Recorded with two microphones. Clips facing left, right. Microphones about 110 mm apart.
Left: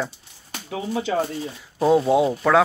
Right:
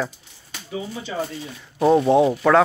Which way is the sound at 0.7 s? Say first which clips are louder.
Left 5 dB; 90° left.